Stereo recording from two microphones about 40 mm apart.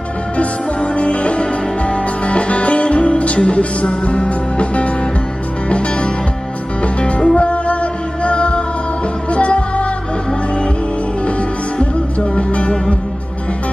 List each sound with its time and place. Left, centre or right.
0.4 s music: left
12.4 s music: left